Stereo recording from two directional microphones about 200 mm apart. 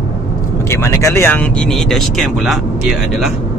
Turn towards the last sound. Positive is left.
turn(degrees=-5)  # may be behind; listen again after turning